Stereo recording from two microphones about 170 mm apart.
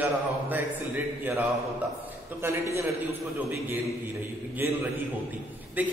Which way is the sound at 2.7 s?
10° right (ahead or behind).